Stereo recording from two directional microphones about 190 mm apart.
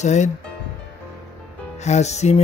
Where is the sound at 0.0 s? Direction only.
40° left (ahead or behind).